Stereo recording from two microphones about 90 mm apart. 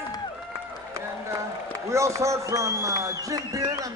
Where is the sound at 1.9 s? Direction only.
35° right (ahead or behind).